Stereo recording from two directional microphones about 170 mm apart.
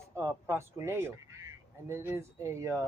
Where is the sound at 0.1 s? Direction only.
15° right (ahead or behind).